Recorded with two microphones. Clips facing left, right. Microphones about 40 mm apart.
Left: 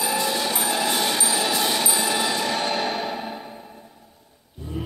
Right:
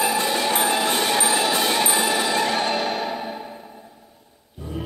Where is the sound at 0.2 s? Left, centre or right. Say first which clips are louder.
Right 3 dB; right.